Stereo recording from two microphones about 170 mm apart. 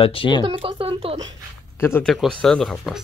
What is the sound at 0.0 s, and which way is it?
Speech, 30° left (ahead or behind).